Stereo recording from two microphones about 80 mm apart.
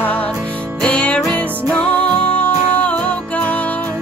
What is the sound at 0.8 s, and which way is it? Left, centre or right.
Music, centre.